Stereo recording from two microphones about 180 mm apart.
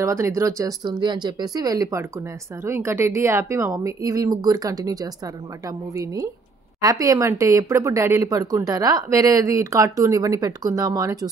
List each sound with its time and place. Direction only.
0.0 s a woman's voice: 15° right (ahead or behind)